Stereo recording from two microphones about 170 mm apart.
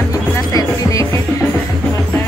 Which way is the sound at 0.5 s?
20° left (ahead or behind).